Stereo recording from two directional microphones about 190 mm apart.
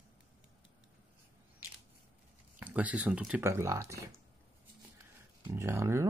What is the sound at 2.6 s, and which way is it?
Speech, 5° right (ahead or behind).